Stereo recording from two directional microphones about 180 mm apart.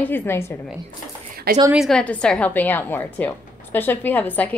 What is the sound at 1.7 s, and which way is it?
A woman's voice, centre (ahead or behind).